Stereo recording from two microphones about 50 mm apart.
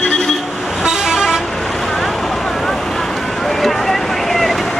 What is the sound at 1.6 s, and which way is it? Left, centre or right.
Vehicle, centre.